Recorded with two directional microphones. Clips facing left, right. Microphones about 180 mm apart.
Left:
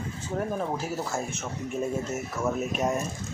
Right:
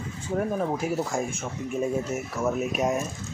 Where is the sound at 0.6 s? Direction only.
15° right (ahead or behind).